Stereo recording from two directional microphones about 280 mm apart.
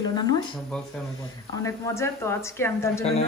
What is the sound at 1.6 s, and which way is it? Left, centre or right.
A woman's voice, centre.